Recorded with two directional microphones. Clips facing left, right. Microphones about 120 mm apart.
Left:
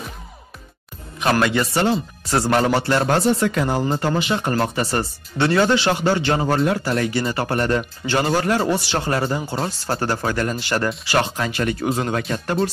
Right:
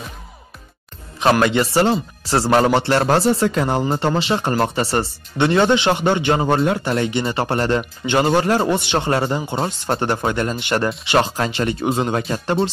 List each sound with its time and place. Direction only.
1.2 s speech: 25° right (ahead or behind)